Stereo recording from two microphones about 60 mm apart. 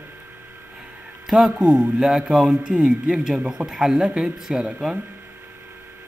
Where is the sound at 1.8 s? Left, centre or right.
Centre.